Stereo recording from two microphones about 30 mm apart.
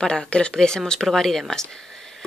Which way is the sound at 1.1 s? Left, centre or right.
Centre.